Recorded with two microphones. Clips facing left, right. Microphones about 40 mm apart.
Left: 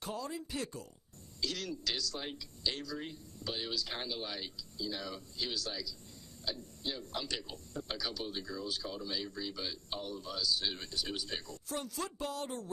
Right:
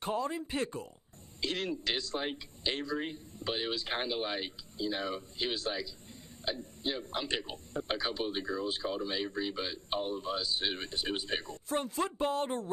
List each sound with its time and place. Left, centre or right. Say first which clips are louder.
0.0 s a man's voice: right 7 dB; right